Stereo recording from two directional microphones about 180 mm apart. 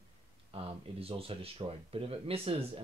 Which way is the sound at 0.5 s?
30° right (ahead or behind).